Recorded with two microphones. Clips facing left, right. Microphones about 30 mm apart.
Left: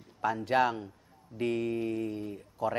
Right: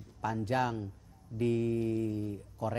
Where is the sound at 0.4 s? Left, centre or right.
Left.